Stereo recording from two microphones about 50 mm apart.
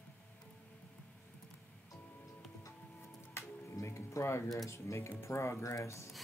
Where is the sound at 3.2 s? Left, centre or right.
Left.